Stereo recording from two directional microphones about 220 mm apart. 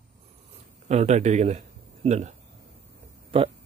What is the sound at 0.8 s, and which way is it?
Speech, 30° right (ahead or behind).